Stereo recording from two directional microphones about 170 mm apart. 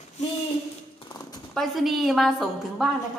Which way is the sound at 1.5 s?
Centre (ahead or behind).